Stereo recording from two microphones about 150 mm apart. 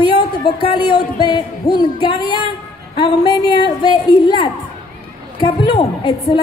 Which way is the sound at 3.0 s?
30° left (ahead or behind).